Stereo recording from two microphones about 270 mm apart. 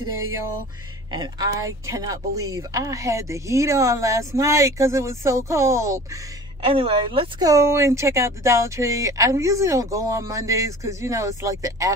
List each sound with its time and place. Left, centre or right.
1.1 s a woman's voice: centre